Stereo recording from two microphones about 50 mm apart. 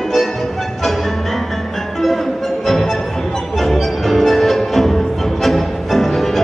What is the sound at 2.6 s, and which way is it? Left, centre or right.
Music, centre.